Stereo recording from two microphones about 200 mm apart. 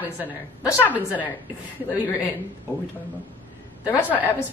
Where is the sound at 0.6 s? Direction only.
15° left (ahead or behind).